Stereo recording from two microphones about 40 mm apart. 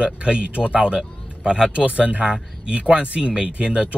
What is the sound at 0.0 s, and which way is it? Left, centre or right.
Speech, right.